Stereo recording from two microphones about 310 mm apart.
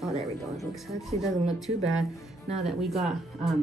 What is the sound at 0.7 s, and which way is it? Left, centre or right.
Speech, centre.